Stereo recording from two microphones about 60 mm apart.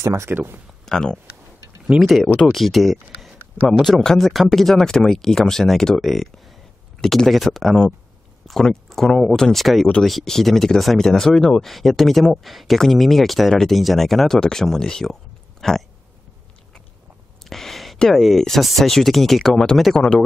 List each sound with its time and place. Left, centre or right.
0.0 s speech: right
0.3 s speech: right
0.8 s speech: centre
17.5 s a sound: centre
17.9 s speech: centre